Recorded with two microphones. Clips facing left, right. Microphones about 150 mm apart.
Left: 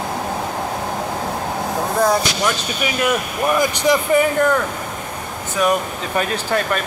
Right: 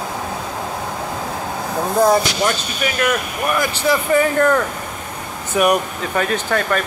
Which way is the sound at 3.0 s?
15° left (ahead or behind).